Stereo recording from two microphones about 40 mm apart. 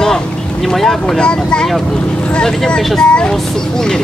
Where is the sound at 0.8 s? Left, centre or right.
Centre.